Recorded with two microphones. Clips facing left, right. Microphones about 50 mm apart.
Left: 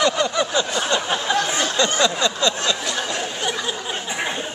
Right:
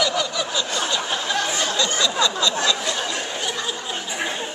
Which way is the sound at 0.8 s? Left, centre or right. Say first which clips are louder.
Left 3 dB; left.